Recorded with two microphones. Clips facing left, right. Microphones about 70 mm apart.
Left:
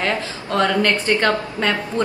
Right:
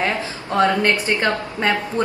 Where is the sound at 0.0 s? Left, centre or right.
Centre.